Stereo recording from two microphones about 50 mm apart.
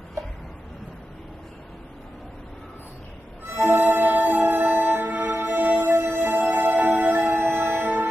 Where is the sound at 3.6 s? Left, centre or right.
Right.